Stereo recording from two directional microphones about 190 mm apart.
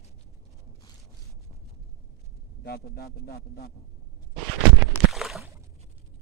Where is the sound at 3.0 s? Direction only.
55° left (ahead or behind).